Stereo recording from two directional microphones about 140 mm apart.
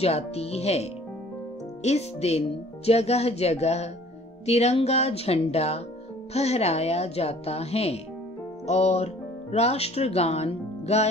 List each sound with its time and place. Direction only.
0.0 s speech: 50° left (ahead or behind)